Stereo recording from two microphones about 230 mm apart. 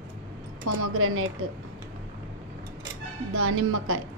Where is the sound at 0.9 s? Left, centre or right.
Right.